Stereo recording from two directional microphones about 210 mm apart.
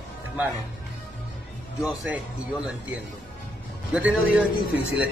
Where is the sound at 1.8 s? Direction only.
5° right (ahead or behind).